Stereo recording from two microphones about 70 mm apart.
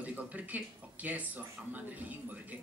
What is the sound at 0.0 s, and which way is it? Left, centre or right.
A man's voice, right.